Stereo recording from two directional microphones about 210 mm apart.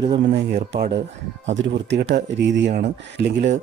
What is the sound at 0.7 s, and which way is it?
Speech, 45° right (ahead or behind).